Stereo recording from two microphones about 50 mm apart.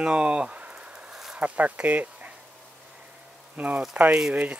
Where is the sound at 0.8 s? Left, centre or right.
Right.